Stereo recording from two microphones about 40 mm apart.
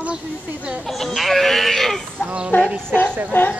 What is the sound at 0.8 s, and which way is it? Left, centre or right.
Speech, centre.